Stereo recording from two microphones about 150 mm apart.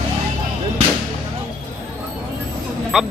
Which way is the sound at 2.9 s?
5° right (ahead or behind).